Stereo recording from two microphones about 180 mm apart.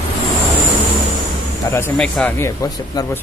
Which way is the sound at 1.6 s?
15° left (ahead or behind).